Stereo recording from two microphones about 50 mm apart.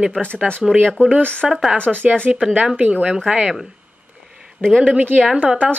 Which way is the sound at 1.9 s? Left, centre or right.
Centre.